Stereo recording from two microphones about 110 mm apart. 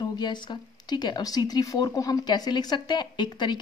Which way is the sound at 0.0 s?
40° left (ahead or behind).